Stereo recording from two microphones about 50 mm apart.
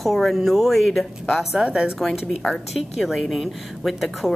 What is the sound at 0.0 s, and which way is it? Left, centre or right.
A woman's voice, centre.